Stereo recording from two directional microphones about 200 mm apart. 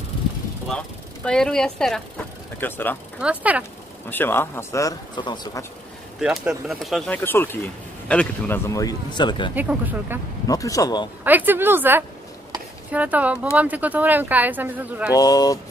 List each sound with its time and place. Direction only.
0.7 s speech: 5° left (ahead or behind)
3.2 s speech: 5° right (ahead or behind)
4.1 s speech: 10° left (ahead or behind)
6.1 s speech: centre (ahead or behind); by 9.5 s 25° left (ahead or behind)
9.6 s speech: 10° right (ahead or behind)
10.4 s speech: 15° left (ahead or behind)
11.2 s speech: 10° right (ahead or behind)
15.1 s speech: 20° left (ahead or behind)